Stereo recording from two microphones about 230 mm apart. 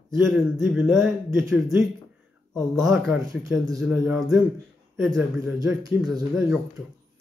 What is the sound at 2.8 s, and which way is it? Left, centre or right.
Speech, centre.